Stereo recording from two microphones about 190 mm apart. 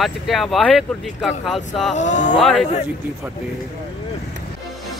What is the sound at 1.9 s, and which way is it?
Speech, 40° left (ahead or behind).